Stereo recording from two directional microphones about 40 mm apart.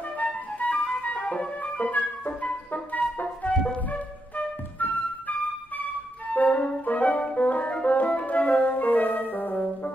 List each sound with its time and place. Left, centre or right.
0.6 s music: left
6.3 s music: left